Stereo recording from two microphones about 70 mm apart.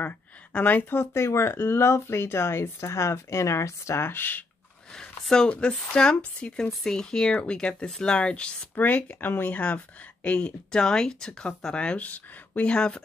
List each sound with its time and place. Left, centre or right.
0.5 s speech: left
4.9 s speech: centre
8.7 s speech: left